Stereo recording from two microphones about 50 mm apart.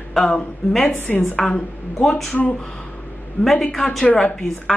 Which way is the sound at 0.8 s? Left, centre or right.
Left.